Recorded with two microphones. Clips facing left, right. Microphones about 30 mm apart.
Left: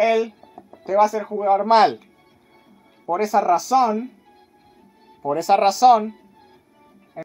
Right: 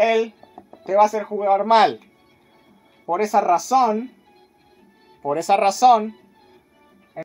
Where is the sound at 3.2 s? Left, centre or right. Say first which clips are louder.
Even; centre.